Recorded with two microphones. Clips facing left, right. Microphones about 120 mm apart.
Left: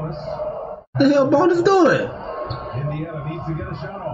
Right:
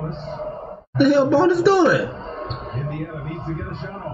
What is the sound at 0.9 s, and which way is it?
Speech, centre (ahead or behind).